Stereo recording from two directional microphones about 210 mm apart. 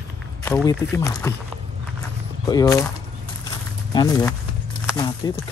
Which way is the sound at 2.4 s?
15° left (ahead or behind).